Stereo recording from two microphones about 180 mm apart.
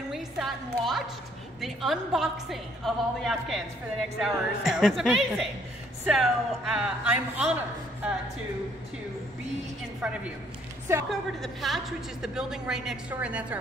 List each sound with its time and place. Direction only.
0.1 s music: centre (ahead or behind)
1.6 s a woman's voice: centre (ahead or behind)
10.0 s a woman's voice: 5° right (ahead or behind)